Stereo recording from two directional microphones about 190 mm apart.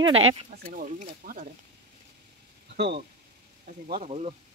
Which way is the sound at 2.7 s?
60° right (ahead or behind).